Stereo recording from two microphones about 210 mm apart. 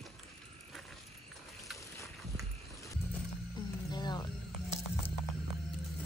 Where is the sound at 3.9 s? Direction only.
20° left (ahead or behind).